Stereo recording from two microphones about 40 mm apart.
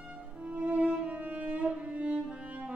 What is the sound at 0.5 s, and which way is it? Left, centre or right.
Music, right.